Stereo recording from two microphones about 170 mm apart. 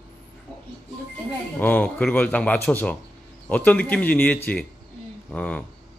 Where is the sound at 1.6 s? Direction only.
10° left (ahead or behind).